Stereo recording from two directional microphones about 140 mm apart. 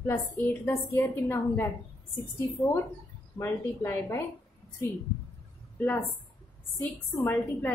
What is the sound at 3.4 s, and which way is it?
Speech, 15° left (ahead or behind).